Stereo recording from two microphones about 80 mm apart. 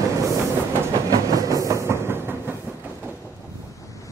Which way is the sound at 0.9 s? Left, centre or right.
Right.